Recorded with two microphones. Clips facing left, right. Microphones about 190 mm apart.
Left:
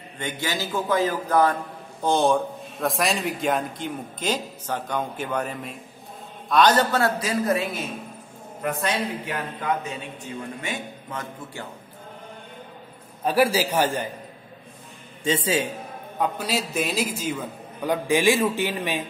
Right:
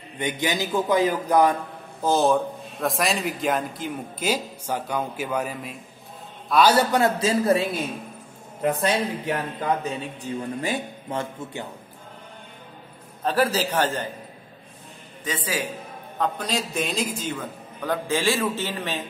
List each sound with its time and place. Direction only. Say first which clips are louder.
0.2 s a man's voice: right 3 dB; 15° right (ahead or behind)
2.0 s a man's voice: even; 5° right (ahead or behind); by 7.8 s 30° right (ahead or behind)
8.8 s a man's voice: right 3 dB; 35° right (ahead or behind)
13.2 s a man's voice: left 2 dB; 10° left (ahead or behind)
15.2 s a man's voice: left 5 dB; 25° left (ahead or behind)
16.2 s a man's voice: even; 5° left (ahead or behind)